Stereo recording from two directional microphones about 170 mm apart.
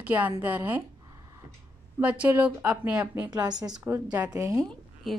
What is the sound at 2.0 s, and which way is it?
Speech, 10° right (ahead or behind).